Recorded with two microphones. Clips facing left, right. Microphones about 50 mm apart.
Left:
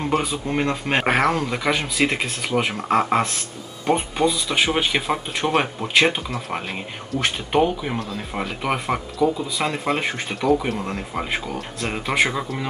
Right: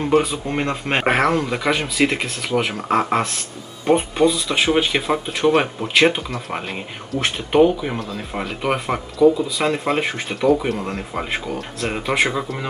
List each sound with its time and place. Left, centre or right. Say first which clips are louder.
0.0 s speech: right 5 dB; centre
0.3 s speech: even; centre